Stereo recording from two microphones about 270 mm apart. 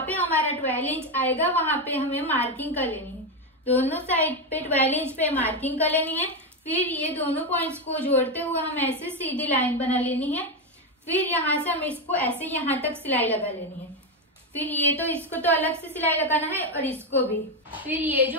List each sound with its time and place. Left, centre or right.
0.0 s a woman's voice: centre
4.1 s a woman's voice: centre
17.8 s a woman's voice: centre